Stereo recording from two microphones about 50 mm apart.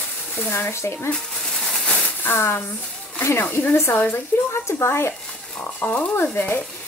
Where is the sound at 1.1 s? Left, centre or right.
Centre.